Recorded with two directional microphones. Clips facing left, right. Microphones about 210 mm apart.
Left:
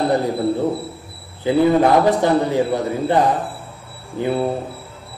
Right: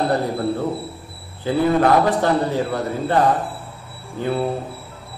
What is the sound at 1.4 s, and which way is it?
A man's voice, 20° left (ahead or behind).